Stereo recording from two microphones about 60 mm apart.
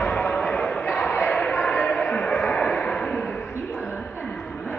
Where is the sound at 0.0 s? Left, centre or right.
Centre.